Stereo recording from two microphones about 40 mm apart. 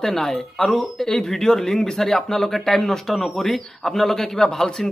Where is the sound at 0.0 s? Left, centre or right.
Centre.